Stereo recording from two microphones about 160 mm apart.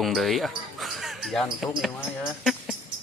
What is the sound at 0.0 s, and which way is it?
Speech, centre (ahead or behind).